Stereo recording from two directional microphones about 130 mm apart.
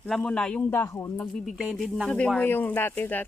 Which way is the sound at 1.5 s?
5° right (ahead or behind).